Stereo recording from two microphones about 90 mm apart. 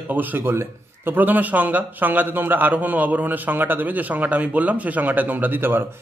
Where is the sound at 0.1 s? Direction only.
20° right (ahead or behind).